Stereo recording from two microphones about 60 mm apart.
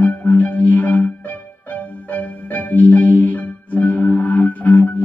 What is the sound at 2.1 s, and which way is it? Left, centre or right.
Music, left.